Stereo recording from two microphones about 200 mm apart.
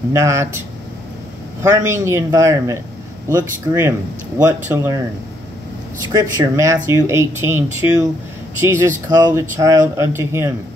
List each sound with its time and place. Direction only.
0.1 s speech: 15° right (ahead or behind)
6.0 s speech: 15° right (ahead or behind)